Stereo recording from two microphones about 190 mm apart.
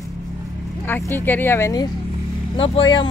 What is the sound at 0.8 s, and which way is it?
Speech, 10° left (ahead or behind).